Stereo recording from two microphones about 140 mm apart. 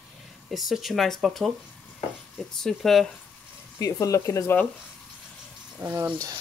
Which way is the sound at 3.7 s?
25° left (ahead or behind).